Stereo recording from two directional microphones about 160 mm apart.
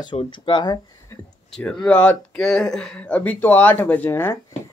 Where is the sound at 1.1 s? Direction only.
15° left (ahead or behind).